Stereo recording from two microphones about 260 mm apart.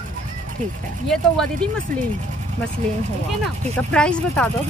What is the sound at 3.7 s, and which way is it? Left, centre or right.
Speech, centre.